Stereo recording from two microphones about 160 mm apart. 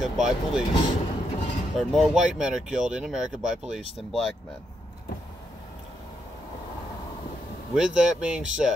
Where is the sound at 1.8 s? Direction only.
Centre (ahead or behind).